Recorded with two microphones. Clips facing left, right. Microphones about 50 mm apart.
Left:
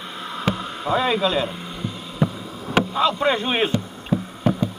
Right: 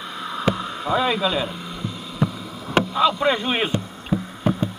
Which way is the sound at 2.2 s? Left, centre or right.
Left.